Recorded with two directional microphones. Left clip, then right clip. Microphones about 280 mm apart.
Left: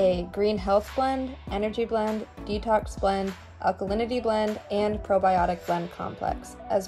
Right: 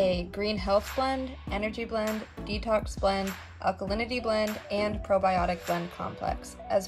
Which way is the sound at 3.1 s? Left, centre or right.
Centre.